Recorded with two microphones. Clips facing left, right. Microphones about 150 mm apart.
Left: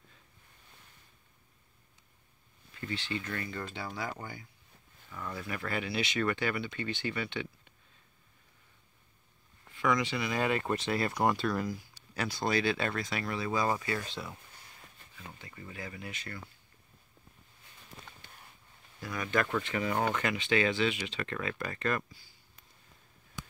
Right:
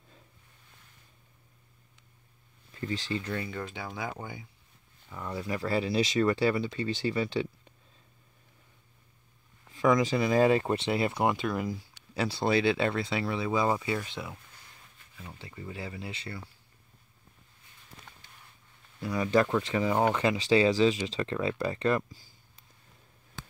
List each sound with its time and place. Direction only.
2.7 s speech: 35° right (ahead or behind)
3.4 s speech: 10° right (ahead or behind); by 7.7 s 35° right (ahead or behind)
10.0 s speech: 35° right (ahead or behind); by 14.4 s 15° right (ahead or behind)
15.5 s speech: 25° right (ahead or behind)
18.9 s speech: 25° right (ahead or behind)